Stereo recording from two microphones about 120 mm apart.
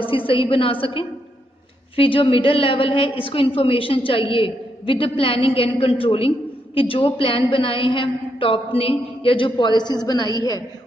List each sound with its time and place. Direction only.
0.3 s a woman's voice: 45° left (ahead or behind); by 10.6 s 30° left (ahead or behind)